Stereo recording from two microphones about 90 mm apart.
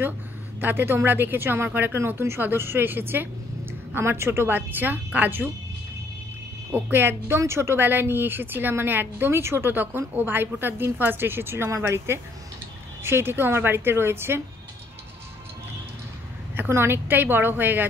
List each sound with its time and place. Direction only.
0.6 s speech: 25° right (ahead or behind)
6.7 s speech: 25° right (ahead or behind)
16.5 s speech: 25° right (ahead or behind)